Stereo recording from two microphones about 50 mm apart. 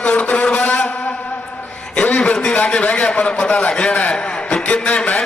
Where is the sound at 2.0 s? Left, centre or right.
Left.